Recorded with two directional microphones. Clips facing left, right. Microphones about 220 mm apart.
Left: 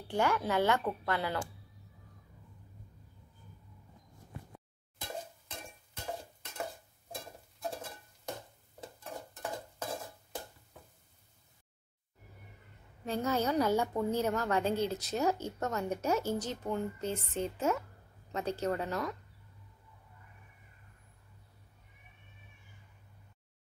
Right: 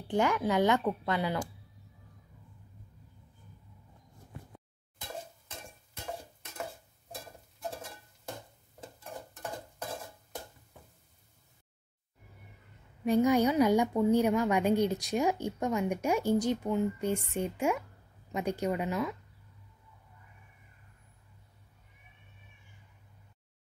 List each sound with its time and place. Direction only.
0.1 s a woman's voice: 15° right (ahead or behind)
13.0 s a woman's voice: 15° right (ahead or behind)